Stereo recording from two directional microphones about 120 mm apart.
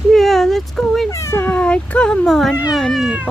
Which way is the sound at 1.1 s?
25° left (ahead or behind).